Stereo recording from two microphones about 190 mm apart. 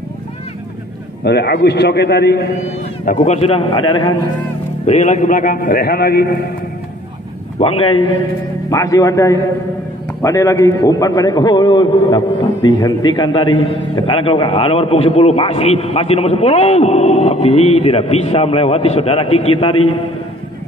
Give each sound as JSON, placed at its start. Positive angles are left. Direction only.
{"t": 1.2, "sound": "a man's voice", "side_deg": 60}
{"t": 3.1, "sound": "a man's voice", "side_deg": 35}
{"t": 4.8, "sound": "a man's voice", "side_deg": 40}
{"t": 7.5, "sound": "a man's voice", "side_deg": 30}